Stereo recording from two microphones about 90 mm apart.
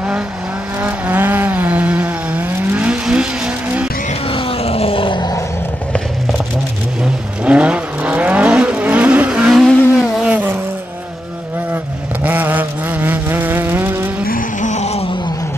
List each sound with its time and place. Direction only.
0.8 s vehicle: 20° right (ahead or behind)
4.3 s groan: 90° left; by 5.2 s 75° left (ahead or behind)
7.4 s vehicle: 15° right (ahead or behind)
9.6 s vehicle: centre (ahead or behind)
10.2 s vehicle: 15° right (ahead or behind)
11.7 s vehicle: 20° right (ahead or behind)